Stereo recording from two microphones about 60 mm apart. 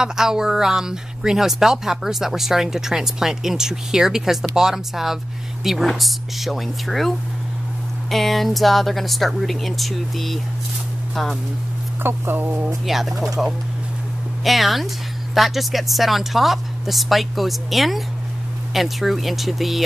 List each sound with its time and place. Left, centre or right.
0.0 s speech: centre
12.0 s speech: right
12.8 s speech: centre